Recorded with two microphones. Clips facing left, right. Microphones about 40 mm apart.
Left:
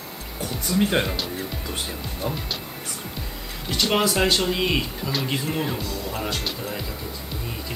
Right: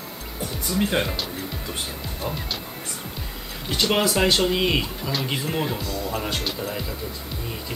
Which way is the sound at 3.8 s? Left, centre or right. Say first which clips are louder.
Even; centre.